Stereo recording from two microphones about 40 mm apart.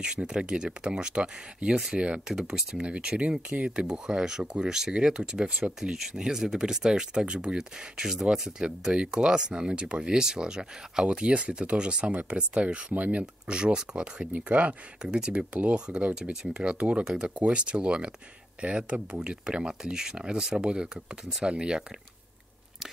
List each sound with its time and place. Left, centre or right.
0.0 s speech: right
3.7 s speech: right
5.6 s speech: right
5.9 s speech: centre
12.9 s speech: right
13.2 s speech: right
14.3 s speech: right
17.0 s speech: centre
17.4 s speech: right